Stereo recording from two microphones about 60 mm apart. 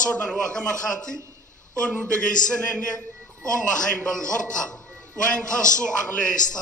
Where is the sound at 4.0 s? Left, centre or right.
Centre.